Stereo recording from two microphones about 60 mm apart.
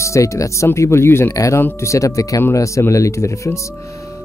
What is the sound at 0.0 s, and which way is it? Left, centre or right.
Speech, left.